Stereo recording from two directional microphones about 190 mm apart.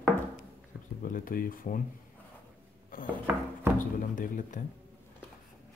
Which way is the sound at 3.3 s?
10° right (ahead or behind).